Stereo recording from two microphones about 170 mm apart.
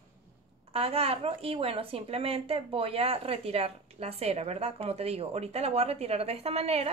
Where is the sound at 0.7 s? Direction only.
35° right (ahead or behind).